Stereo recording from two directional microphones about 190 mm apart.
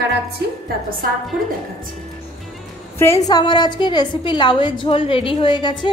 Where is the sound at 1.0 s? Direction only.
50° right (ahead or behind).